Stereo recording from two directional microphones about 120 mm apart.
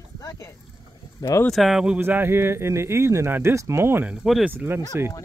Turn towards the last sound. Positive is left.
turn(degrees=-15)  # may be behind; listen again after turning